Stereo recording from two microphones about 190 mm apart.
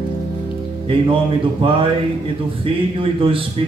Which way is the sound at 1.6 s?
25° right (ahead or behind).